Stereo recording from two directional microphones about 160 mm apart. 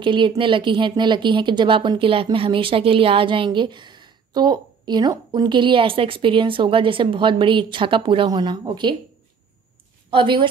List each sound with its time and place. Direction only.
0.0 s a woman's voice: 30° right (ahead or behind)
10.1 s a woman's voice: 30° right (ahead or behind)